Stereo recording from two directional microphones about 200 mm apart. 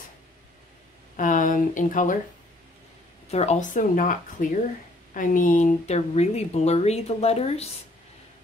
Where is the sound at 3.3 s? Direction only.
35° left (ahead or behind).